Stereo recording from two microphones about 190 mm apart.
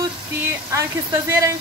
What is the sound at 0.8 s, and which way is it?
Speech, 15° right (ahead or behind).